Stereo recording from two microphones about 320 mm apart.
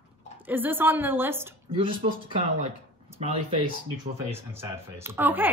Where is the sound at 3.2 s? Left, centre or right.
Centre.